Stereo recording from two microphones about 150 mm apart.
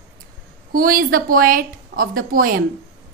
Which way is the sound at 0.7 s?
75° right (ahead or behind).